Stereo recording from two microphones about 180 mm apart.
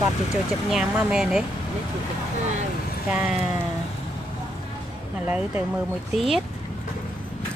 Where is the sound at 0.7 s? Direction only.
5° right (ahead or behind).